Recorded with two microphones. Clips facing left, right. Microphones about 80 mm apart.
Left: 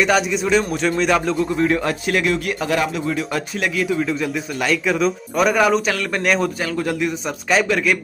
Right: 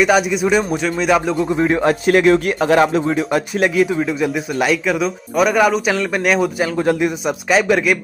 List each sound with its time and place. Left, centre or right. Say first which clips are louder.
0.0 s speech: right 3 dB; centre
1.5 s speech: right 6 dB; right
2.0 s speech: right 9 dB; right
3.5 s speech: right 4 dB; right
4.8 s speech: even; centre
5.9 s speech: right 4 dB; centre
6.2 s speech: right 2 dB; centre
6.8 s speech: right 6 dB; right
7.2 s speech: right 3 dB; centre